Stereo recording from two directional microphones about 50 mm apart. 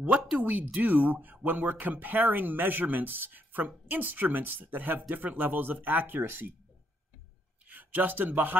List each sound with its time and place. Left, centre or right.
0.4 s speech: right
7.6 s speech: right